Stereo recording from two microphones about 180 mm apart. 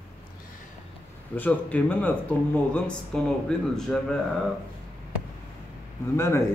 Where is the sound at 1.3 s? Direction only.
10° left (ahead or behind).